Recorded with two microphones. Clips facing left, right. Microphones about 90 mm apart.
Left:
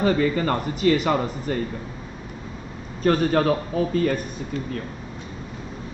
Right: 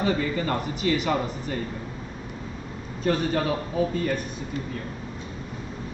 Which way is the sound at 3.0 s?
55° left (ahead or behind).